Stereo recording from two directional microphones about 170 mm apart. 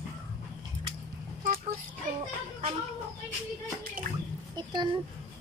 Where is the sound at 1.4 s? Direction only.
60° right (ahead or behind).